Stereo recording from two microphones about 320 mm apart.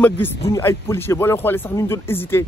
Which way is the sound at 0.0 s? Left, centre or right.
Centre.